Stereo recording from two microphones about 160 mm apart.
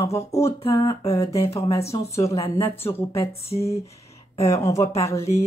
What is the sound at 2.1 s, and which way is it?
Speech, 20° left (ahead or behind).